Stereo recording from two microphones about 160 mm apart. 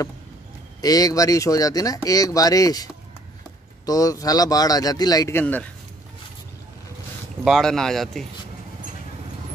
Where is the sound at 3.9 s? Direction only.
20° left (ahead or behind).